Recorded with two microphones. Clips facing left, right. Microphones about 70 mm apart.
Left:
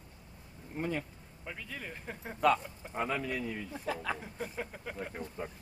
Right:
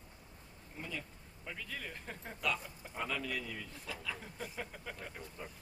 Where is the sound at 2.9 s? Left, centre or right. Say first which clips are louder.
Left 5 dB; left.